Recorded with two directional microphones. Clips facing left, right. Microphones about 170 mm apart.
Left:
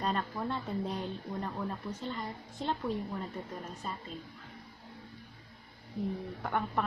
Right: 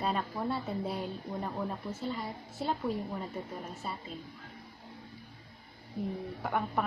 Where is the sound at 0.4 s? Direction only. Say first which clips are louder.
Right 1 dB; 10° right (ahead or behind).